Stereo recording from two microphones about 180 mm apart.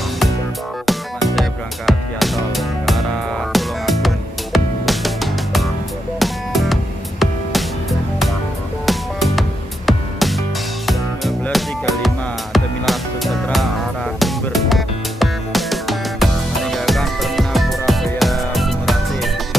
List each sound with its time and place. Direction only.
0.8 s music: centre (ahead or behind)
8.8 s music: centre (ahead or behind)